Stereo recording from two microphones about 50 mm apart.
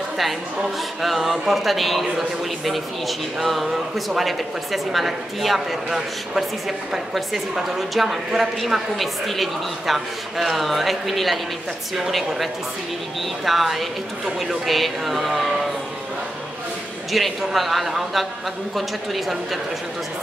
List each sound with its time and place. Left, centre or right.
1.0 s a man's voice: centre
13.5 s a man's voice: centre
17.1 s a man's voice: centre